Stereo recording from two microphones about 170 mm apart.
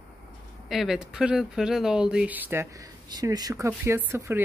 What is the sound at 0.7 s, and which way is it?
Speech, centre (ahead or behind).